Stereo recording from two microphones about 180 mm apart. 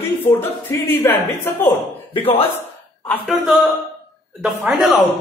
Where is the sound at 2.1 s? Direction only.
30° left (ahead or behind).